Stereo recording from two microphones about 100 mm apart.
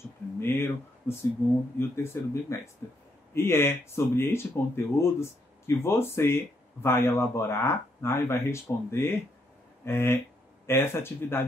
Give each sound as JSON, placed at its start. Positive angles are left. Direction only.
{"t": 0.4, "sound": "speech", "side_deg": 25}